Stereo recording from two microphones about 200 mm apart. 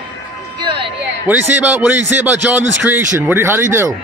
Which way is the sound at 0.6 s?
25° right (ahead or behind).